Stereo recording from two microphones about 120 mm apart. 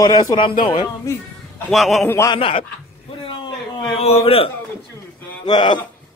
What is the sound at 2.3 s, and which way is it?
Speech, 50° left (ahead or behind).